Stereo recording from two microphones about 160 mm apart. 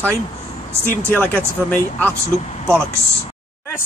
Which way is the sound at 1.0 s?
10° left (ahead or behind).